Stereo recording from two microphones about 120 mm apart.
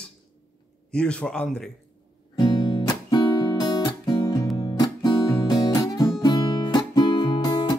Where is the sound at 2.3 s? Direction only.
35° left (ahead or behind).